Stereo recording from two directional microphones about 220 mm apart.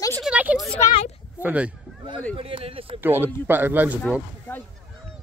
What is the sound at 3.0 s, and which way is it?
Speech, 10° right (ahead or behind).